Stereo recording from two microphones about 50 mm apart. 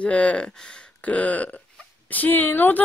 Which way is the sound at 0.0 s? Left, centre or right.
Left.